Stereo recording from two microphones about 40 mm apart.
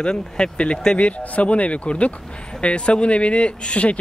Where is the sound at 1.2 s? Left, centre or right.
Left.